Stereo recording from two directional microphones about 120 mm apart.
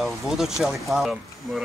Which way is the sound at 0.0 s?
5° right (ahead or behind).